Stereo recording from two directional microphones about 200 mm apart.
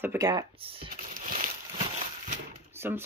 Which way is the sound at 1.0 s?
40° right (ahead or behind).